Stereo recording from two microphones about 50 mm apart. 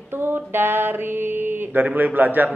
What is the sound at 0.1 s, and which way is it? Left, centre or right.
Mantra, right.